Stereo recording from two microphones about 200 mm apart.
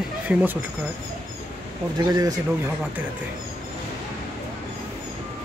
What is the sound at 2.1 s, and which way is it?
Speech, 20° right (ahead or behind).